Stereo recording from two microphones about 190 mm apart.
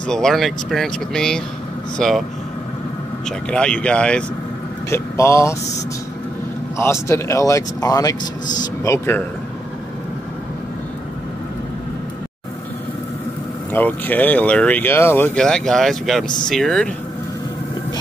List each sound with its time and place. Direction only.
0.0 s speech: 5° left (ahead or behind)
3.3 s speech: 5° left (ahead or behind)
6.8 s speech: 15° left (ahead or behind)
13.7 s speech: 10° left (ahead or behind)